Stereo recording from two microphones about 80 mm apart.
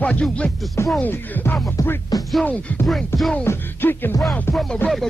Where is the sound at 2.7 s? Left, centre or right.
Centre.